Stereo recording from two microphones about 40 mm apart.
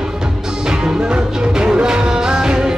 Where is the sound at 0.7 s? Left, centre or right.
Centre.